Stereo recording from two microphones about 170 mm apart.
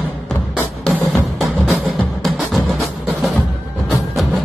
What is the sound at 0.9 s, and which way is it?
Music, 5° left (ahead or behind).